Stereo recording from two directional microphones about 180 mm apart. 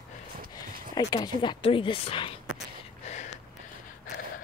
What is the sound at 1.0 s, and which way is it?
Speech, 20° left (ahead or behind).